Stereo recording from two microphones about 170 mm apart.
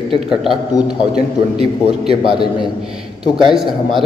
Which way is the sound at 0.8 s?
35° right (ahead or behind).